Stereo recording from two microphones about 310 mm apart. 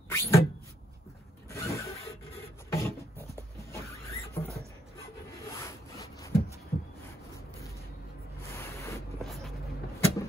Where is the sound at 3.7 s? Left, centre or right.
Centre.